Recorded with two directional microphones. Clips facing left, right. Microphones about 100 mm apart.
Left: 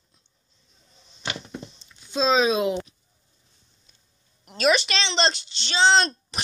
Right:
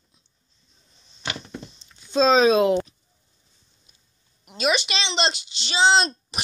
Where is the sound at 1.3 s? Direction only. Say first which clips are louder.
Even; 15° left (ahead or behind).